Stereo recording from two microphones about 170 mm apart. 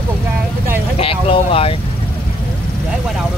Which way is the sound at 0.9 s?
35° left (ahead or behind).